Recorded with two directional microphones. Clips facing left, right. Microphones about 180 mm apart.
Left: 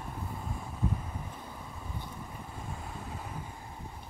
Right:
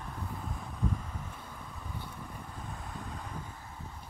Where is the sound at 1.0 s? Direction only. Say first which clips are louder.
Left 2 dB; 25° left (ahead or behind).